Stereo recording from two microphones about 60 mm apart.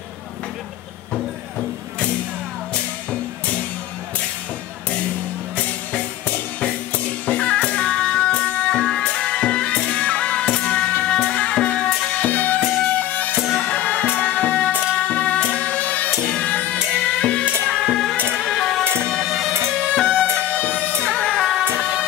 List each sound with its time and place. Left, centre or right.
2.7 s music: left
5.6 s music: left
11.9 s music: centre
12.2 s music: left
17.8 s music: centre
18.1 s music: right
18.4 s music: centre
18.9 s music: right
19.1 s music: centre
20.3 s music: left
21.0 s music: centre
21.4 s music: centre